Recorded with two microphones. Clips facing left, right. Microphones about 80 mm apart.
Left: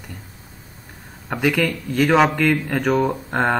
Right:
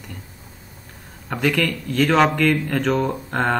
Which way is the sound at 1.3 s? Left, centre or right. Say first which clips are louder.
Left 1 dB; centre.